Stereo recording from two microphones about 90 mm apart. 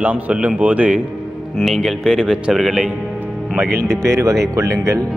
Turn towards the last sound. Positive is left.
turn(degrees=-35)  # may be behind; listen again after turning